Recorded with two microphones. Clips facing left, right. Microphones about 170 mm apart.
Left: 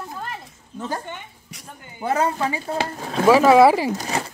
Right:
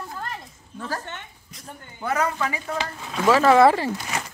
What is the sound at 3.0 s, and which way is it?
Speech, 35° left (ahead or behind).